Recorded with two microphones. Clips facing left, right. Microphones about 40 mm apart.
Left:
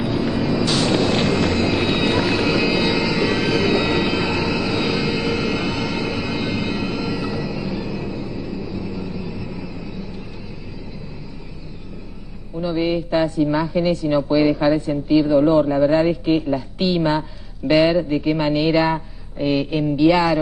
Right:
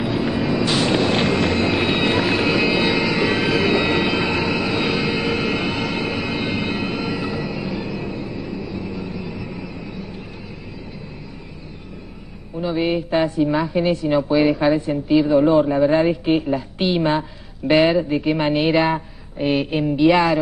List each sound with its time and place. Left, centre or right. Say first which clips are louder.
0.0 s vehicle: even; centre
7.5 s music: even; centre
8.0 s train: even; centre
9.3 s a sound: even; centre
12.5 s a woman's voice: even; centre
14.3 s speech: even; centre
14.7 s a woman's voice: even; centre
18.8 s a sound: even; centre
19.4 s a woman's voice: even; centre
19.7 s a woman's voice: even; centre